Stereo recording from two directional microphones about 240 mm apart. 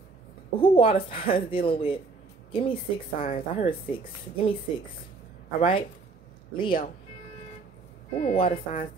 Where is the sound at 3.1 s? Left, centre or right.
Left.